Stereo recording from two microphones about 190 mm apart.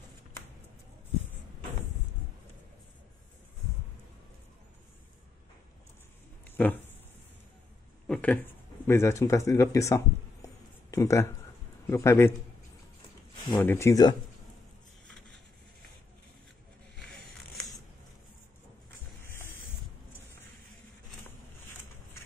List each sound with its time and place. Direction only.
6.4 s a sound: 10° left (ahead or behind)
8.1 s speech: 5° left (ahead or behind)
13.6 s speech: 10° left (ahead or behind)